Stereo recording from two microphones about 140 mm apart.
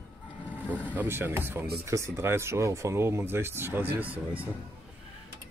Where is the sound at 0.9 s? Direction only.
15° right (ahead or behind).